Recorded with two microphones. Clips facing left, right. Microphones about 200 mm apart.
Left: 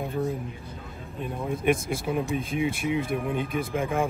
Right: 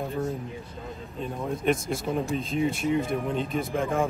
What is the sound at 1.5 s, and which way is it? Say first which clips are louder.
Speech: left 1 dB; centre (ahead or behind).